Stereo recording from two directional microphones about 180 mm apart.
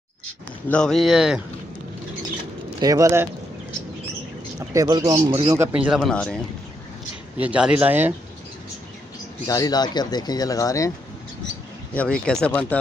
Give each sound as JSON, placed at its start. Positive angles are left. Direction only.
{"t": 0.7, "sound": "speech", "side_deg": 5}
{"t": 2.8, "sound": "speech", "side_deg": -20}
{"t": 4.6, "sound": "speech", "side_deg": -20}
{"t": 7.3, "sound": "speech", "side_deg": -5}
{"t": 9.5, "sound": "speech", "side_deg": 20}
{"t": 11.9, "sound": "speech", "side_deg": 5}